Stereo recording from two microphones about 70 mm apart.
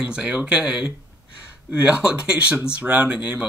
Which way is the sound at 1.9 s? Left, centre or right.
Centre.